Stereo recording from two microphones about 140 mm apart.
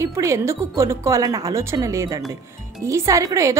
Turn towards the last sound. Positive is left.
turn(degrees=-20)  # may be behind; listen again after turning